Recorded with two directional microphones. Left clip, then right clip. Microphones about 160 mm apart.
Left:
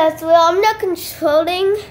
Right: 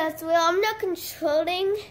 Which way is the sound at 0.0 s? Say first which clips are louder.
Left 10 dB; 55° right (ahead or behind).